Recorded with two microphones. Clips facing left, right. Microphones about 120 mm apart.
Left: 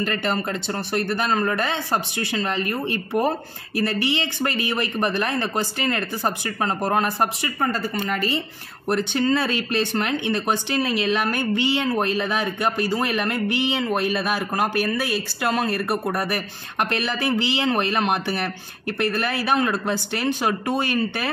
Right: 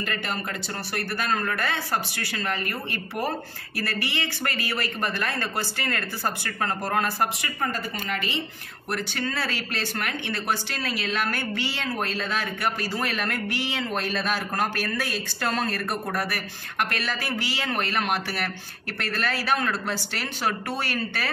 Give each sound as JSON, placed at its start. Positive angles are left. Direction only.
{"t": 0.0, "sound": "a woman's voice", "side_deg": 30}
{"t": 0.9, "sound": "speech", "side_deg": 20}
{"t": 7.7, "sound": "a woman's voice", "side_deg": 40}
{"t": 8.9, "sound": "speech", "side_deg": 20}